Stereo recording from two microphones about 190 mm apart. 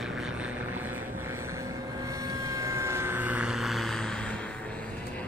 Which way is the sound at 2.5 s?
15° right (ahead or behind).